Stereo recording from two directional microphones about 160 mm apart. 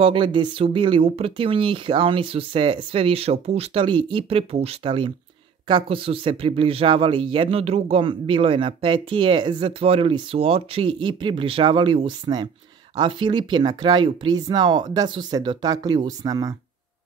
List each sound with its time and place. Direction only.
0.0 s speech: 30° right (ahead or behind)